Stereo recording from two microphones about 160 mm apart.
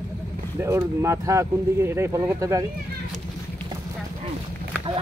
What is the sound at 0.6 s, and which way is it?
Speech, 15° right (ahead or behind).